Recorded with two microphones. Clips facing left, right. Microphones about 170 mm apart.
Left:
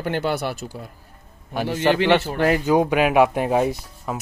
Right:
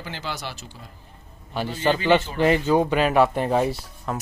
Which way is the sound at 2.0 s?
65° left (ahead or behind).